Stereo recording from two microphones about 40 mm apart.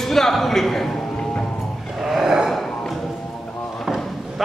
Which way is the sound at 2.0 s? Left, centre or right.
Centre.